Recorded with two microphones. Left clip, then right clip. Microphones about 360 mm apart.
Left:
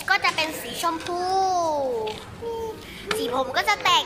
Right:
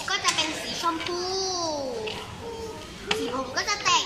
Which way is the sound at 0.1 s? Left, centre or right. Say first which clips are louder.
Left 4 dB; centre.